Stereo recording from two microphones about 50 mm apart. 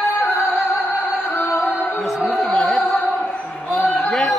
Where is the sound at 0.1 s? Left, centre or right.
Left.